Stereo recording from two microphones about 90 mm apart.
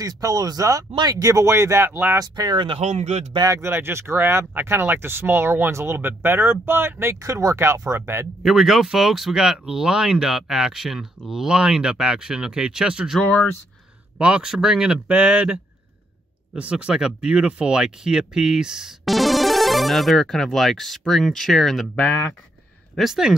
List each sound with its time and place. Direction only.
0.0 s speech: 45° right (ahead or behind)
1.9 s speech: 20° right (ahead or behind)
2.1 s speech: 50° right (ahead or behind)
3.6 s speech: 25° right (ahead or behind)
8.4 s speech: centre (ahead or behind)
22.9 s speech: 5° right (ahead or behind)